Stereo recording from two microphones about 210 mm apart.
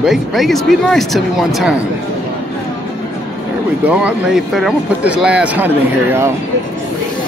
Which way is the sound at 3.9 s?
5° right (ahead or behind).